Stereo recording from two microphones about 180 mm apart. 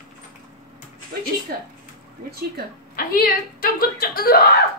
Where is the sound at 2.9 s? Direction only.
55° left (ahead or behind).